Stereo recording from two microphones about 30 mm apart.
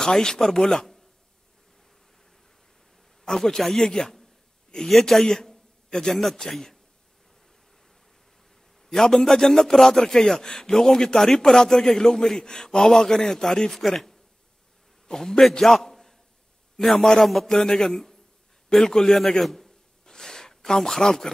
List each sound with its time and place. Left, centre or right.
0.0 s speech: left
3.3 s a man's voice: centre
6.5 s a man's voice: centre
8.8 s a man's voice: centre
15.6 s a sound: centre
16.8 s a man's voice: centre
20.1 s a sound: centre